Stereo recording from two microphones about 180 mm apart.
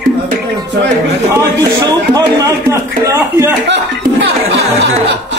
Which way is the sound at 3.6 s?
80° right.